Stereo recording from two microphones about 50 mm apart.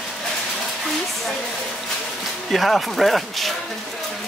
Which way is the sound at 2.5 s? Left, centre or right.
Centre.